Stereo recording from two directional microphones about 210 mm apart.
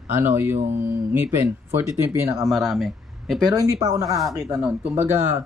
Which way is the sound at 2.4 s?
Centre (ahead or behind).